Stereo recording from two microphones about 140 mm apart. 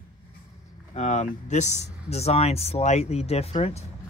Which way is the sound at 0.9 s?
55° left (ahead or behind).